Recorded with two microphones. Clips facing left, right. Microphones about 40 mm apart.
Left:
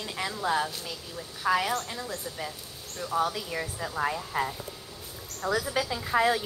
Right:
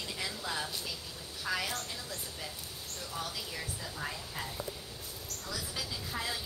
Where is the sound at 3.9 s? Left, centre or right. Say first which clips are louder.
Left 13 dB; left.